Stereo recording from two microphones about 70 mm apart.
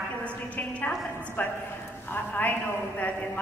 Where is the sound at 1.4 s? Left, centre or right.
Left.